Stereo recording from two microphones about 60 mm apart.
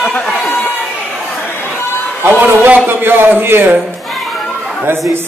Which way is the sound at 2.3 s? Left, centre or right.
Right.